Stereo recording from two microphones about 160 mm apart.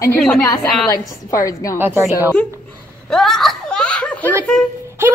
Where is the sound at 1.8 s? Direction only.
15° right (ahead or behind).